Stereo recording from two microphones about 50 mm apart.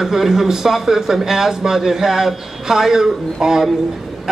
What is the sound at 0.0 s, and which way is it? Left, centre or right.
A man's voice, centre.